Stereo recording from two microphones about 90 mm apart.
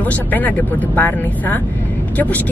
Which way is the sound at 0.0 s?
20° left (ahead or behind).